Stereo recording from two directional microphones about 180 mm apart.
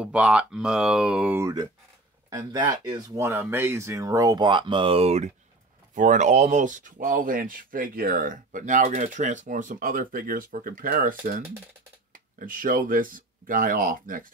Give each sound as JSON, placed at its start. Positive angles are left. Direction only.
{"t": 0.0, "sound": "speech", "side_deg": -5}
{"t": 2.2, "sound": "speech", "side_deg": -20}